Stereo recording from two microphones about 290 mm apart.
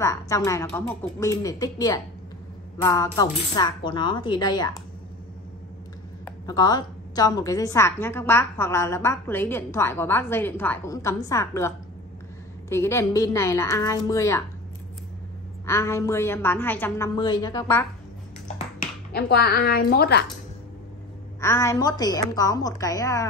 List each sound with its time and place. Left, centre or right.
0.0 s a woman's voice: centre
6.2 s a woman's voice: centre
15.6 s a woman's voice: centre
19.1 s a woman's voice: left
21.4 s a woman's voice: centre